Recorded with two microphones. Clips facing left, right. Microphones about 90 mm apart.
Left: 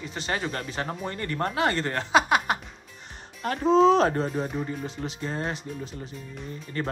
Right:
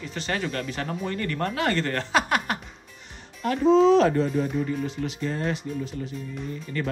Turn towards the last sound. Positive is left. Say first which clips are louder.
# right 2 dB
turn(degrees=30)  # may be behind; listen again after turning